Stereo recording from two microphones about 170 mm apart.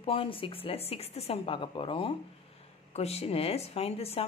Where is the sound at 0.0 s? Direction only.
35° left (ahead or behind).